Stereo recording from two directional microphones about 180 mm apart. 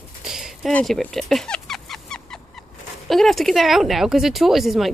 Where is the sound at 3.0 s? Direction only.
Centre (ahead or behind).